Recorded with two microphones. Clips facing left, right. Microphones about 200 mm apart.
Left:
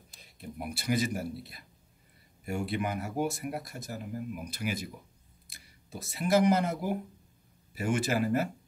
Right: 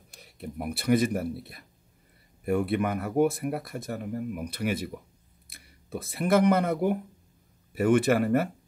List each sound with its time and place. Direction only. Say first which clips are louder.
0.1 s speech: right 5 dB; 65° right (ahead or behind)